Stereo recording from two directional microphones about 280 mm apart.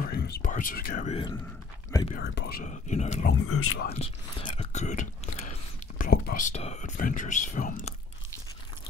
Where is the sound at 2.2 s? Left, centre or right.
Left.